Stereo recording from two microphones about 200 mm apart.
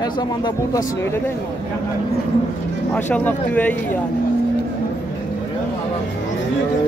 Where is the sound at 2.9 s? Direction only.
10° left (ahead or behind).